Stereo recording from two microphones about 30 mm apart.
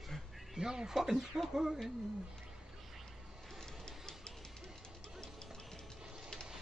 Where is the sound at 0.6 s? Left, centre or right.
Centre.